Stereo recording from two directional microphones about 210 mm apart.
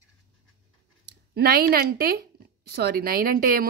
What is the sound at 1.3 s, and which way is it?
Speech, 50° right (ahead or behind).